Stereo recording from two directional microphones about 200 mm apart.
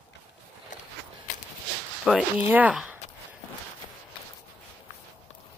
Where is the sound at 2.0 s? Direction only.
5° right (ahead or behind).